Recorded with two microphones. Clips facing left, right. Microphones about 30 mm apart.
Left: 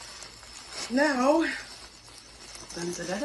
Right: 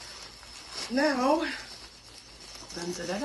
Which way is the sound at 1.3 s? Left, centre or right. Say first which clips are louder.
Left 5 dB; left.